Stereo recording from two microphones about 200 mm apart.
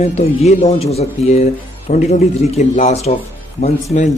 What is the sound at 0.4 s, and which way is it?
Speech, 30° left (ahead or behind).